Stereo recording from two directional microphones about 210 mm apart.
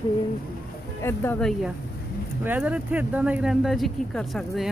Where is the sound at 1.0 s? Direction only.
10° left (ahead or behind).